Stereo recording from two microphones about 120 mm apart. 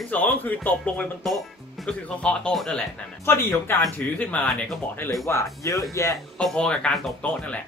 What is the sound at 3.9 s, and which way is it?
Speech, 15° left (ahead or behind).